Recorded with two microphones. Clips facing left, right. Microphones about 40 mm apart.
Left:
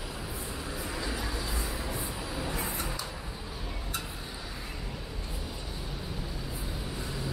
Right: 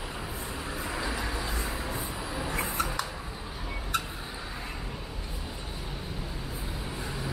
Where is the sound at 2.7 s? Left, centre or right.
Right.